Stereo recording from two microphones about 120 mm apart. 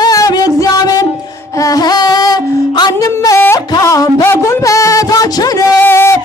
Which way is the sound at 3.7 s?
30° left (ahead or behind).